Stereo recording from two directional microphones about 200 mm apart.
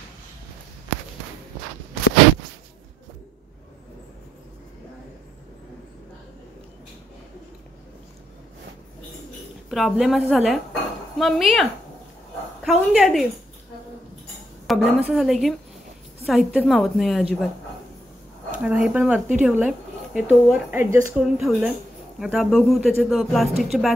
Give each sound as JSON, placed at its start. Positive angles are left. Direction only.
{"t": 9.7, "sound": "speech", "side_deg": 0}
{"t": 14.7, "sound": "speech", "side_deg": -5}
{"t": 18.6, "sound": "speech", "side_deg": -5}